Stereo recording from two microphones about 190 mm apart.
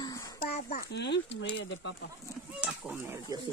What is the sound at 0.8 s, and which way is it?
Speech, 65° left (ahead or behind).